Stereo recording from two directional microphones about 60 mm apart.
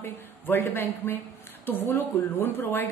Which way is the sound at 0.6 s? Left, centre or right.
Left.